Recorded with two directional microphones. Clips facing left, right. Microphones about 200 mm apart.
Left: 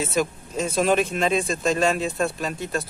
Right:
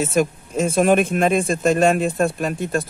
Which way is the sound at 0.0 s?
50° right (ahead or behind).